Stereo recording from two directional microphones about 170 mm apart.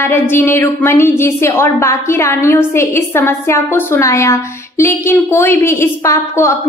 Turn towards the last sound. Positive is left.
turn(degrees=15)  # may be behind; listen again after turning